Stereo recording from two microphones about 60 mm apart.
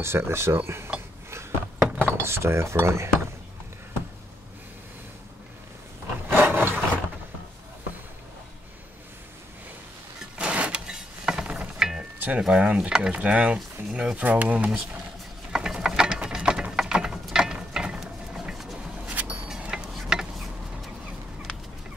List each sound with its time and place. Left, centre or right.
0.0 s speech: right
0.9 s a sound: right
1.3 s cutlery: right
6.2 s wood: right
10.3 s a sound: centre
11.4 s music: centre
12.4 s speech: centre
15.5 s ratchet: centre
16.8 s mechanisms: centre
19.0 s a sound: right